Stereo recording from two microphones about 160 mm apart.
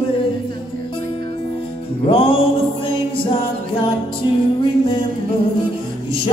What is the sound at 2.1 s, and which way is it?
Music, 35° left (ahead or behind).